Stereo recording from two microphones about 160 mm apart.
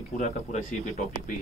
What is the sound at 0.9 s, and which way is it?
Speech, 70° left (ahead or behind).